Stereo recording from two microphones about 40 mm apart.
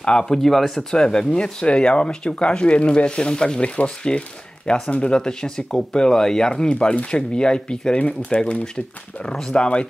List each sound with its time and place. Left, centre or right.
0.0 s speech: centre
0.7 s speech: centre